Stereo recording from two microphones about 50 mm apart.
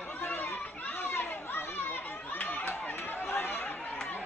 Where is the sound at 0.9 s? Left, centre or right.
Left.